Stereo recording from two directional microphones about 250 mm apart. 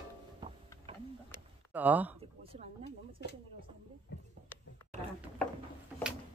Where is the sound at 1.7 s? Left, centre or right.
Centre.